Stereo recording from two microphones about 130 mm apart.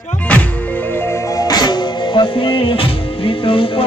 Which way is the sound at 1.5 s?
35° left (ahead or behind).